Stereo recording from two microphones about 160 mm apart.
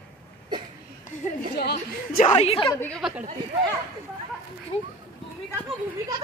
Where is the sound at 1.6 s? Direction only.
90° left.